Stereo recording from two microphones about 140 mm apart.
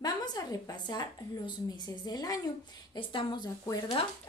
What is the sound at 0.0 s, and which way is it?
A woman's voice, 30° left (ahead or behind).